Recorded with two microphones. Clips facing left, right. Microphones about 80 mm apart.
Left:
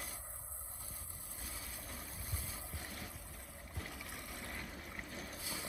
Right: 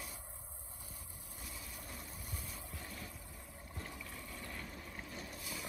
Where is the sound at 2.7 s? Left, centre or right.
Left.